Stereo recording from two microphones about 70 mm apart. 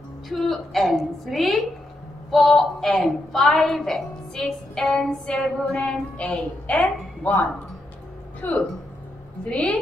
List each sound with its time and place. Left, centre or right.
0.3 s a woman's voice: centre
8.4 s a woman's voice: left